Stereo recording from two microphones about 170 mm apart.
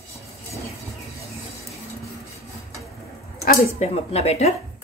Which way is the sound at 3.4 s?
45° left (ahead or behind).